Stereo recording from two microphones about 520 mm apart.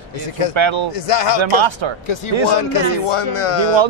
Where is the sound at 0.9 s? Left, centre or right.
Left.